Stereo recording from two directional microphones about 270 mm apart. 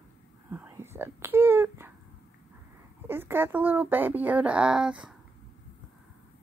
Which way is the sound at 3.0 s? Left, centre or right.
Centre.